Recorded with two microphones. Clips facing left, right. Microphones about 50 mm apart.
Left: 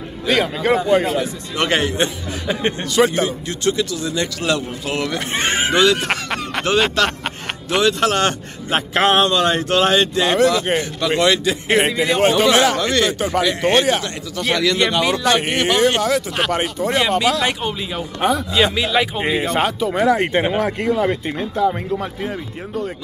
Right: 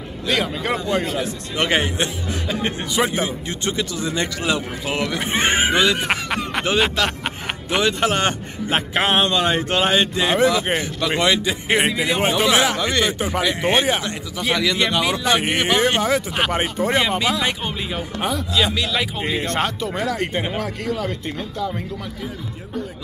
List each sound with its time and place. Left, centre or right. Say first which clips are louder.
0.3 s a man's voice: left 5 dB; centre
2.4 s speech: left 4 dB; centre
2.9 s a man's voice: left 5 dB; centre
7.0 s music: left 3 dB; centre
7.8 s a man's voice: left 3 dB; centre
18.8 s speech: left 4 dB; centre
20.1 s speech: left 7 dB; left
21.4 s speech: left 9 dB; left